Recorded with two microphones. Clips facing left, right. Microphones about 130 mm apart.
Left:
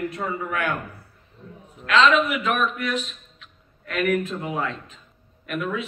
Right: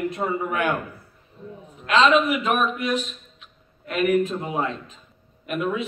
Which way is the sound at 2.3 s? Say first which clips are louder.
Right 2 dB; 35° right (ahead or behind).